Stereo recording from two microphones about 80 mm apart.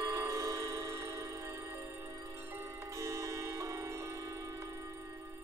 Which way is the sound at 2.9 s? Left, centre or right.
Right.